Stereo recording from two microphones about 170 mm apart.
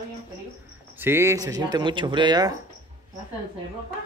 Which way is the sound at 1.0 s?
15° right (ahead or behind).